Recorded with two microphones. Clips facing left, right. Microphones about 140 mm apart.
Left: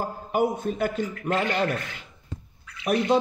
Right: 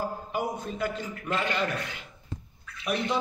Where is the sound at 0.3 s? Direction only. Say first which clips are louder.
Left 7 dB; 50° left (ahead or behind).